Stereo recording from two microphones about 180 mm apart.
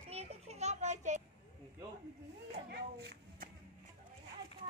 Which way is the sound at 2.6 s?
65° right (ahead or behind).